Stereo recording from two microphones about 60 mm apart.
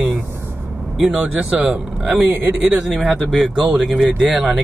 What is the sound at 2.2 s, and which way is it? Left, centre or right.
Speech, right.